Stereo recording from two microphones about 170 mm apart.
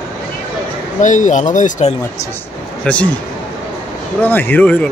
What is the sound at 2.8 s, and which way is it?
Speech, 5° left (ahead or behind).